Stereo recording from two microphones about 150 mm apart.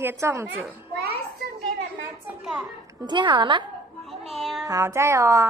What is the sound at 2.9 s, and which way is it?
Speech, 30° right (ahead or behind).